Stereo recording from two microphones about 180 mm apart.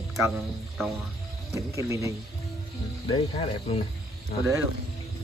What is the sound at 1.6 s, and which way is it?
Speech, 15° right (ahead or behind).